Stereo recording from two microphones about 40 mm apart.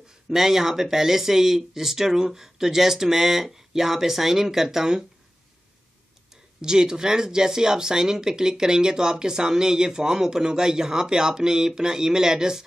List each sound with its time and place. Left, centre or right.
0.3 s speech: centre
6.6 s speech: centre